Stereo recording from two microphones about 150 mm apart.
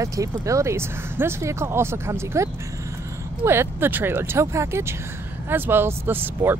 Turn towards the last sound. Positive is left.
turn(degrees=-15)  # may be behind; listen again after turning